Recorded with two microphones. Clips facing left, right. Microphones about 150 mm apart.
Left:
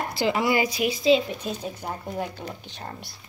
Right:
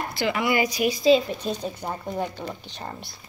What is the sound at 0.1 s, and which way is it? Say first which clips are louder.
Speech: left 1 dB; 35° left (ahead or behind).